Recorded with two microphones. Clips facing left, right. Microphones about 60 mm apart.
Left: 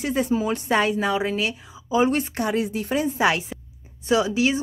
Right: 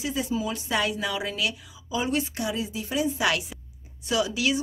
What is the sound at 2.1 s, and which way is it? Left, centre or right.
A woman's voice, left.